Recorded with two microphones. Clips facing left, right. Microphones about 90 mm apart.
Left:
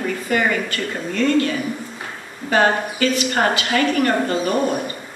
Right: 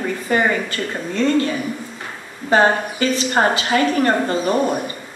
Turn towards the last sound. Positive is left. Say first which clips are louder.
# right 1 dB
turn(degrees=-25)  # may be behind; listen again after turning